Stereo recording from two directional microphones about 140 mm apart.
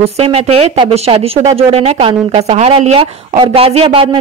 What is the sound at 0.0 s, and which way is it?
Speech, 45° right (ahead or behind).